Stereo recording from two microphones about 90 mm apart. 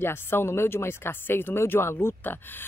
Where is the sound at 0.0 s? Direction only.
25° left (ahead or behind).